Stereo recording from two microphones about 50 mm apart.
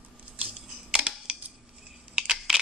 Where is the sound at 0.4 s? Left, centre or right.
Centre.